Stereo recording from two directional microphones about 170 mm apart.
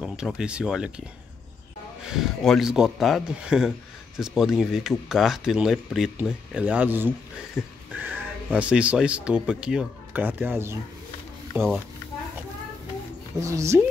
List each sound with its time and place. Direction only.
0.0 s speech: 5° right (ahead or behind)
2.0 s speech: centre (ahead or behind)
13.4 s speech: 20° right (ahead or behind)